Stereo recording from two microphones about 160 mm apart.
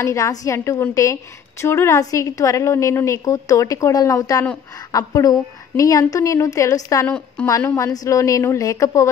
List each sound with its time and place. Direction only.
0.0 s a woman's voice: 20° left (ahead or behind)
7.1 s speech: 5° left (ahead or behind)
7.4 s a woman's voice: 20° left (ahead or behind)